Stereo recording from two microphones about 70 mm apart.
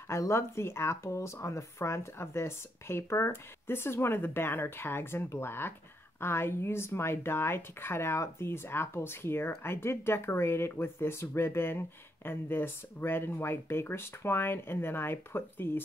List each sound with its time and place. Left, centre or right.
0.1 s speech: left